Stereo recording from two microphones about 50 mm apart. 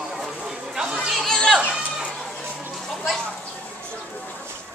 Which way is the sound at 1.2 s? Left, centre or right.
Centre.